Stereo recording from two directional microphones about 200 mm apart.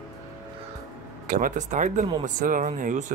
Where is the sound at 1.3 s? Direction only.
40° right (ahead or behind).